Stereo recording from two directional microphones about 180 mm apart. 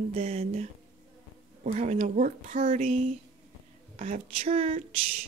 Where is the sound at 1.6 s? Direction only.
40° right (ahead or behind).